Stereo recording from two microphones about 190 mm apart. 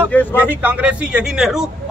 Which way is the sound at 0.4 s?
10° right (ahead or behind).